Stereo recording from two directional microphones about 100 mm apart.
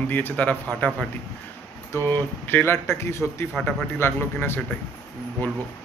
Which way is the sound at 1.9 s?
20° left (ahead or behind).